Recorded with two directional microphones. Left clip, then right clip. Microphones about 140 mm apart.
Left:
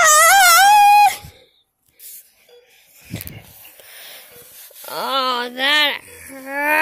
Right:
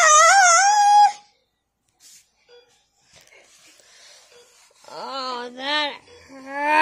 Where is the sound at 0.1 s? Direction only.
50° left (ahead or behind).